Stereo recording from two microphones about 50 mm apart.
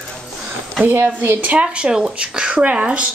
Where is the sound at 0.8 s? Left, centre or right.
Right.